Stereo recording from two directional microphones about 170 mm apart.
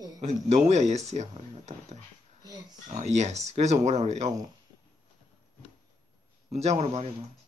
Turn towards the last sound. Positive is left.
turn(degrees=-40)  # may be behind; listen again after turning